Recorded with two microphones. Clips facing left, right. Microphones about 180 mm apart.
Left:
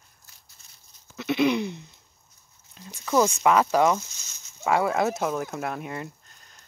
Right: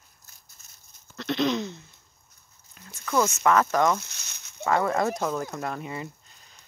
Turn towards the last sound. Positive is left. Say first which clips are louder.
# even
turn(degrees=0)  # may be behind; listen again after turning